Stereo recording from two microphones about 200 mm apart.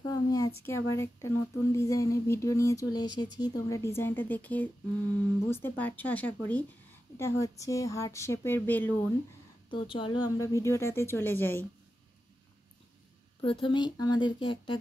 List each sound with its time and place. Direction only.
0.0 s a sound: 20° left (ahead or behind)
0.7 s a woman's voice: 15° left (ahead or behind)
9.7 s a woman's voice: 25° left (ahead or behind); by 11.6 s 10° left (ahead or behind)
13.4 s speech: 25° left (ahead or behind)